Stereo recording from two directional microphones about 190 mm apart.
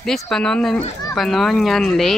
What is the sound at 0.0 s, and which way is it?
Speech, 5° left (ahead or behind).